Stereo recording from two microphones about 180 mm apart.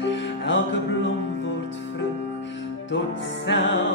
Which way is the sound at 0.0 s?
90° left.